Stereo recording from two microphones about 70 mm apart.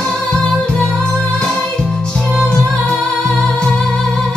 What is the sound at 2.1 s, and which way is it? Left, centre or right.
Music, centre.